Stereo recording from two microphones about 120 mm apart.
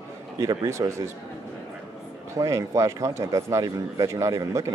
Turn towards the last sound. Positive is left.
turn(degrees=-25)  # may be behind; listen again after turning